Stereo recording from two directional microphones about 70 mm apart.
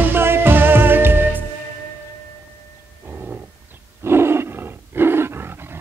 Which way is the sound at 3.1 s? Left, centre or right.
Right.